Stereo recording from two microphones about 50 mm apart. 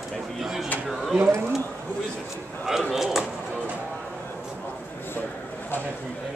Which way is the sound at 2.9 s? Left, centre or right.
Centre.